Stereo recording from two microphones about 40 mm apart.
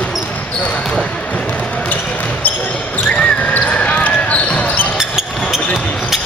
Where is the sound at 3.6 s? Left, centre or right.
Left.